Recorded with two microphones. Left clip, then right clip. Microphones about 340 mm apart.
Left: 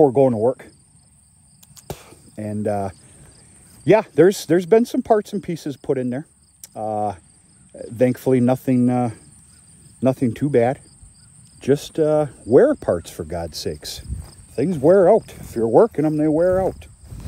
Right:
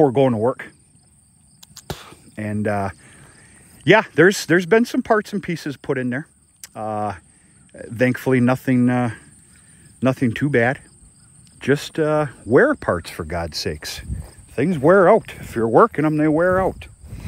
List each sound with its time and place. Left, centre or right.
0.0 s speech: right
1.6 s a sound: right
3.8 s speech: right